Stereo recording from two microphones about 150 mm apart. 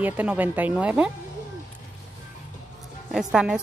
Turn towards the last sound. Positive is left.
turn(degrees=-5)  # may be behind; listen again after turning